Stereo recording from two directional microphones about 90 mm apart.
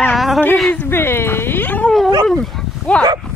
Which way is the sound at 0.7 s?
25° left (ahead or behind).